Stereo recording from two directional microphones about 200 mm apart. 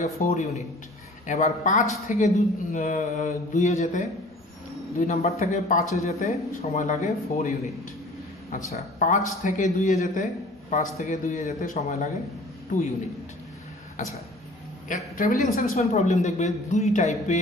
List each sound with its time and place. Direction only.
0.0 s a man's voice: 35° left (ahead or behind)
8.7 s a man's voice: 40° left (ahead or behind)
14.9 s a man's voice: 40° left (ahead or behind)